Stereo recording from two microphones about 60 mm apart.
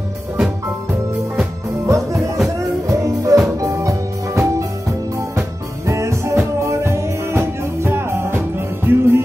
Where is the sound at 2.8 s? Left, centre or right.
Right.